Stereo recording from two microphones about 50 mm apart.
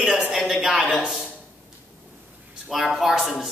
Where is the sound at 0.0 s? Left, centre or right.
Centre.